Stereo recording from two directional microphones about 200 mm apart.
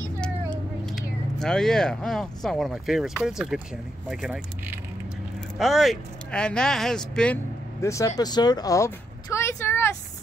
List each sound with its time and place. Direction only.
0.2 s speech: 5° left (ahead or behind)
7.8 s speech: 15° left (ahead or behind)